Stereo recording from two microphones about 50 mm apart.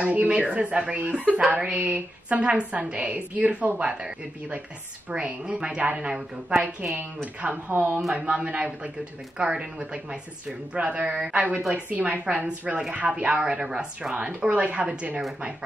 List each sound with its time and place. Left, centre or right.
0.0 s a woman's voice: right
5.1 s a woman's voice: right
7.0 s speech: right
8.1 s a woman's voice: centre
11.1 s a woman's voice: centre
11.7 s a woman's voice: right